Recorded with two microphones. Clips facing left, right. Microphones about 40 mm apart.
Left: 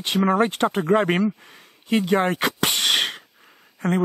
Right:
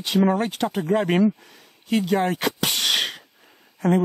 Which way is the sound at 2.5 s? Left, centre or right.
Centre.